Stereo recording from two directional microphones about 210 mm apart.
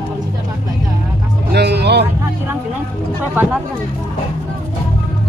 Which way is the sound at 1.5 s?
50° right (ahead or behind).